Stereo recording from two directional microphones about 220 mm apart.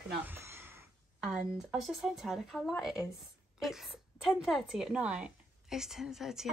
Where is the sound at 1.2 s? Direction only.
5° right (ahead or behind).